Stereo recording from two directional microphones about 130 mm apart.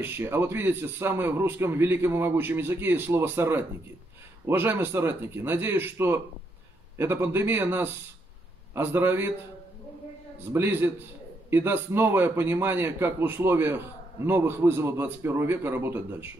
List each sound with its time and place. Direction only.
0.0 s speech: 15° right (ahead or behind)
10.5 s speech: 15° right (ahead or behind)